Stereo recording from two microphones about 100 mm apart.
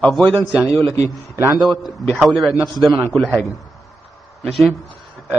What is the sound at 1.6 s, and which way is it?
A man's voice, centre (ahead or behind).